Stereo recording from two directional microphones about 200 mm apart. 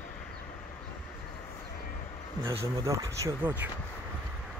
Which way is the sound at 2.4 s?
25° right (ahead or behind).